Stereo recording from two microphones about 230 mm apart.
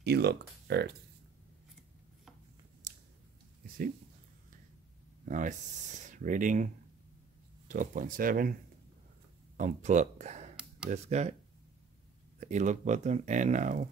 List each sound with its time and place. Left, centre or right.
0.0 s speech: right
3.6 s speech: right
5.3 s speech: right
9.6 s speech: right
10.5 s a sound: centre
10.9 s speech: right
12.4 s speech: right